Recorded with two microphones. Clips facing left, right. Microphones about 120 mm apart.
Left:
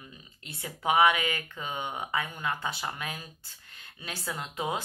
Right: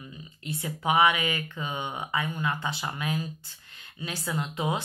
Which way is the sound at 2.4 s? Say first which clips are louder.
Right 2 dB; 45° left (ahead or behind).